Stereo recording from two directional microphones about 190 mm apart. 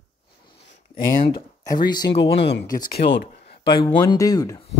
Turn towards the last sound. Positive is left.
turn(degrees=20)  # may be behind; listen again after turning